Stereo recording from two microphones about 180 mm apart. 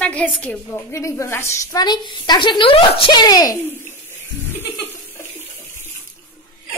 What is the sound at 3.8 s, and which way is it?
Water, 15° right (ahead or behind).